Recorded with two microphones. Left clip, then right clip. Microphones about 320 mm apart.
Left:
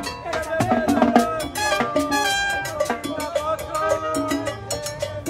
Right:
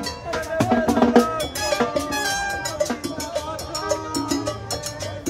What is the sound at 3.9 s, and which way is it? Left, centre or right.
Music, left.